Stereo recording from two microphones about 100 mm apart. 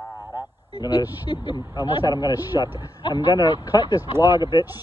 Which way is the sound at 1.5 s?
45° left (ahead or behind).